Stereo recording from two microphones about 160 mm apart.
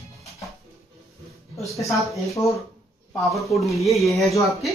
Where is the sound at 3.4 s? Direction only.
20° left (ahead or behind).